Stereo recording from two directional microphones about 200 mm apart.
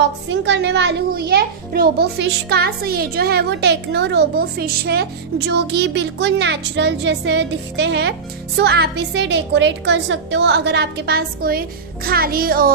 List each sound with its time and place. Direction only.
0.0 s a child's voice: 60° right (ahead or behind); by 12.7 s 45° right (ahead or behind)